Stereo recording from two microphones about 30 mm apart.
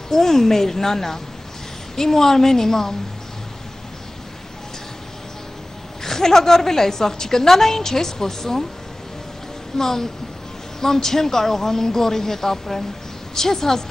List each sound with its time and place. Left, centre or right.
0.1 s a woman's voice: centre
6.0 s a woman's voice: centre
9.8 s a woman's voice: centre